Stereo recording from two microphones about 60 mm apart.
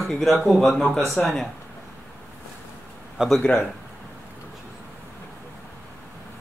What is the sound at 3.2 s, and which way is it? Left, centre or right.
Speech, centre.